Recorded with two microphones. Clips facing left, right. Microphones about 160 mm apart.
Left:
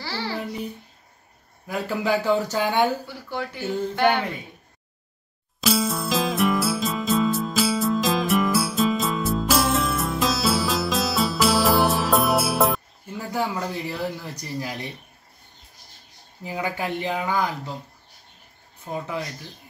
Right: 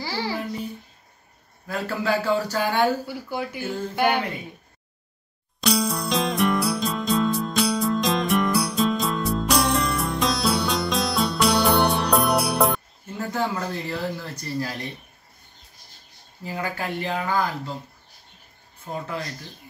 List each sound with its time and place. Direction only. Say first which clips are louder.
0.0 s a child's voice: right 2 dB; 15° right (ahead or behind)
1.7 s speech: left 1 dB; 15° left (ahead or behind)
3.1 s speech: right 2 dB; 10° right (ahead or behind)
5.6 s music: even; centre (ahead or behind)
13.3 s speech: even; 10° left (ahead or behind)
16.4 s speech: left 2 dB; 15° left (ahead or behind)